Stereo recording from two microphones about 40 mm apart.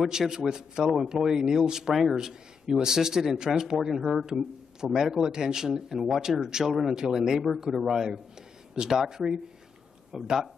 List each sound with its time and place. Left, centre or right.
0.1 s speech: centre